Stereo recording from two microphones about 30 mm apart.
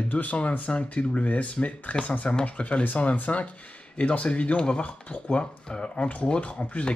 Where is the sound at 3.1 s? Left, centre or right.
Left.